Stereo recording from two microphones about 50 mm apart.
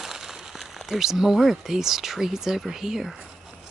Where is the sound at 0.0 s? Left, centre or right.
Centre.